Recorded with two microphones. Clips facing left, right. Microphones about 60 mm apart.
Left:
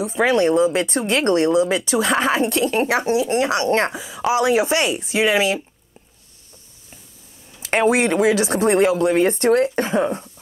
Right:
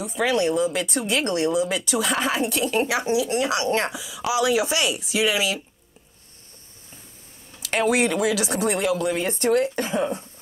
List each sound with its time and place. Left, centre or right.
0.0 s speech: left
1.5 s speech: left
2.0 s speech: left
7.6 s speech: left